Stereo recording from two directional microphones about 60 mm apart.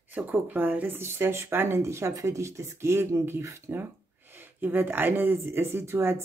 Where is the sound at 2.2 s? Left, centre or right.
Right.